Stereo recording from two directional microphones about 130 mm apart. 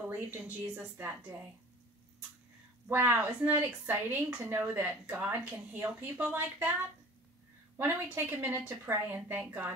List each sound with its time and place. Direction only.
0.0 s speech: 10° right (ahead or behind)
2.9 s speech: 15° right (ahead or behind)